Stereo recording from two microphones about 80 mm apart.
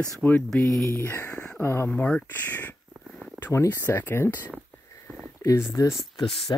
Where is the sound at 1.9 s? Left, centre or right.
Centre.